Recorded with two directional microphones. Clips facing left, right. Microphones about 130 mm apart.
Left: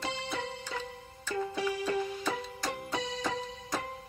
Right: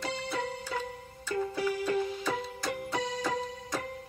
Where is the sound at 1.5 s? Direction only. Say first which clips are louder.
Right 2 dB; 25° left (ahead or behind).